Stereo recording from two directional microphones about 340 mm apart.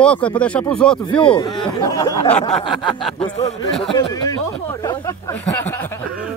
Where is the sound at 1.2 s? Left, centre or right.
Centre.